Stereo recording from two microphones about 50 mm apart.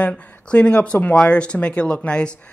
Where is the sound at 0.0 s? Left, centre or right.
Left.